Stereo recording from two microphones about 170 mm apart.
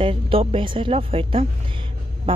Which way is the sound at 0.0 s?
30° right (ahead or behind).